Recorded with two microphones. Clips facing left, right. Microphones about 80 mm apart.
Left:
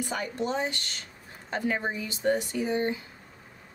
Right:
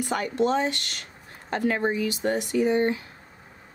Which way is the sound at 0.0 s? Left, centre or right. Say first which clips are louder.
Right 6 dB; right.